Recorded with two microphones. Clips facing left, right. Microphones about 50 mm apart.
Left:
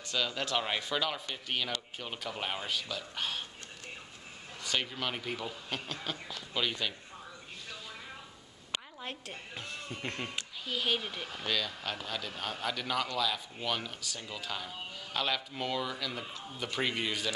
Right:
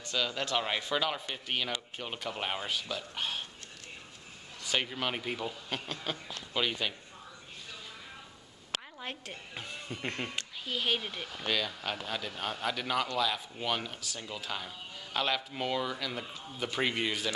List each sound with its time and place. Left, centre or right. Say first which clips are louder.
0.0 s speech: right 1 dB; centre
4.6 s speech: right 2 dB; centre
9.0 s speech: right 1 dB; centre